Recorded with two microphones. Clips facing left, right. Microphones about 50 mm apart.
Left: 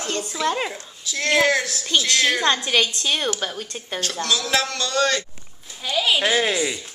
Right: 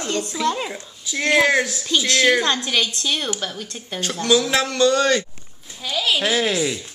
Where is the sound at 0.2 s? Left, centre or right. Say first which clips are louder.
Even; centre.